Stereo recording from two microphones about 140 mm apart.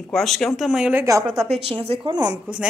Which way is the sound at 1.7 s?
40° right (ahead or behind).